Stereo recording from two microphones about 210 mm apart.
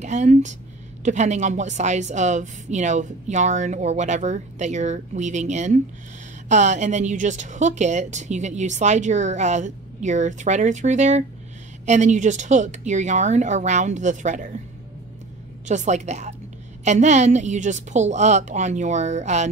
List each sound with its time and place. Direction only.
0.0 s a woman's voice: 35° right (ahead or behind)
15.6 s a woman's voice: 35° right (ahead or behind)